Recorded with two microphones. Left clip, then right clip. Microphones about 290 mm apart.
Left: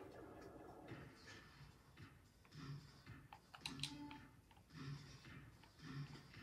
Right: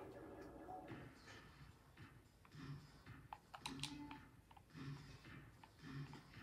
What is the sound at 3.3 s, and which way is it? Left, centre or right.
Typing, right.